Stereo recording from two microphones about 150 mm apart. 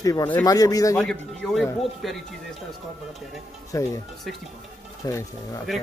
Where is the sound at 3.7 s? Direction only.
20° left (ahead or behind).